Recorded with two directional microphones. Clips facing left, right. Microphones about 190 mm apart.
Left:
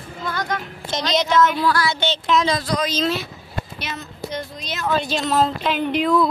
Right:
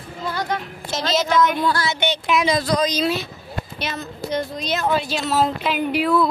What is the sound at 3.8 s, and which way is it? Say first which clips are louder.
A woman's voice: right 3 dB; 35° right (ahead or behind).